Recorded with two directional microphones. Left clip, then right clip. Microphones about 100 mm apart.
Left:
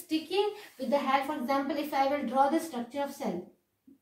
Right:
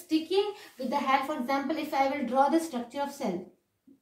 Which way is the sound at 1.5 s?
15° left (ahead or behind).